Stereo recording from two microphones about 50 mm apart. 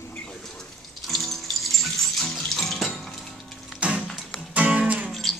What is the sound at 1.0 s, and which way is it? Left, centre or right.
Water tap, centre.